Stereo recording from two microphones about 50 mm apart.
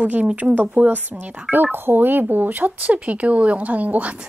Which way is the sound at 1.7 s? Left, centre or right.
Right.